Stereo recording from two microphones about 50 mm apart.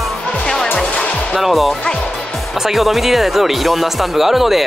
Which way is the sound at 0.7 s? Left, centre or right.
Left.